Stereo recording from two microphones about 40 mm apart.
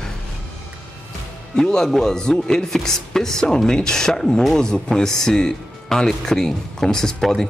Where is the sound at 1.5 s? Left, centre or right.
Centre.